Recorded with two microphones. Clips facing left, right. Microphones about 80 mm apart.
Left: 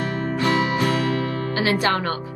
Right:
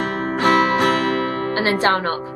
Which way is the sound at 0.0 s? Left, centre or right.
Right.